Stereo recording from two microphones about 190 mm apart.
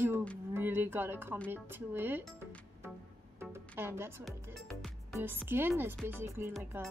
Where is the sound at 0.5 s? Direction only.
10° right (ahead or behind).